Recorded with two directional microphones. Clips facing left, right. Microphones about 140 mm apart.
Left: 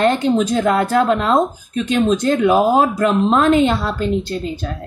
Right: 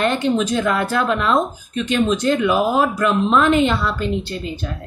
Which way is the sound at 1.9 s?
45° left (ahead or behind).